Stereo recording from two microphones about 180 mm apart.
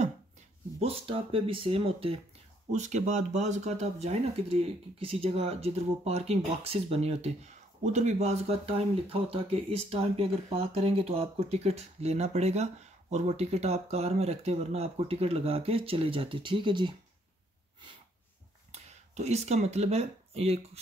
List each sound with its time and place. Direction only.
0.7 s speech: 30° right (ahead or behind)
18.7 s speech: 40° right (ahead or behind)